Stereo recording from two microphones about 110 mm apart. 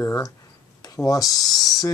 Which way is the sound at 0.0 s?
30° left (ahead or behind).